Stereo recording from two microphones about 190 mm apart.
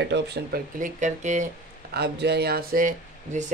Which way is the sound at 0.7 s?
40° right (ahead or behind).